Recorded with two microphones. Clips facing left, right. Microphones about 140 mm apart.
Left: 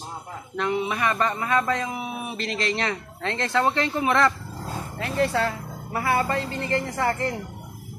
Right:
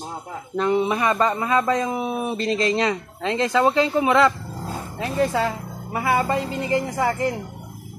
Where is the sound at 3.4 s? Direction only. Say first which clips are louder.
Right 4 dB; 10° right (ahead or behind).